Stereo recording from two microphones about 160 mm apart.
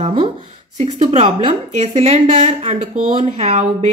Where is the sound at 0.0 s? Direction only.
35° right (ahead or behind).